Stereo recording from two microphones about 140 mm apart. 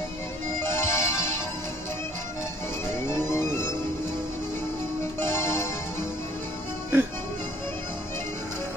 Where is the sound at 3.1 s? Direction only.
20° left (ahead or behind).